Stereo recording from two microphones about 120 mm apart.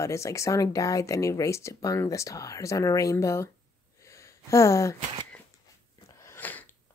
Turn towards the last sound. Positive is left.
turn(degrees=15)  # may be behind; listen again after turning